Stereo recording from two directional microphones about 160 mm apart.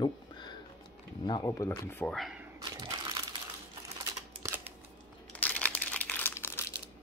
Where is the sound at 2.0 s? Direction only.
Centre (ahead or behind).